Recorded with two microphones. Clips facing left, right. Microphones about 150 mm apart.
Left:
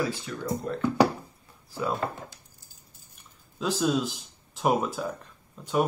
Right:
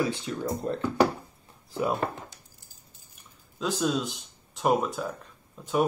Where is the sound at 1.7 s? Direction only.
20° right (ahead or behind).